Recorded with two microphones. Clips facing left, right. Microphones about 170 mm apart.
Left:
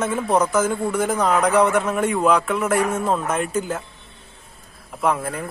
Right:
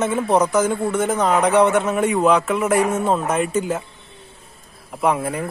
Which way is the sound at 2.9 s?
30° right (ahead or behind).